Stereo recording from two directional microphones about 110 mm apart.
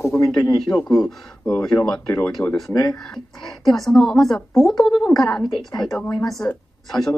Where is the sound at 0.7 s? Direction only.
5° left (ahead or behind).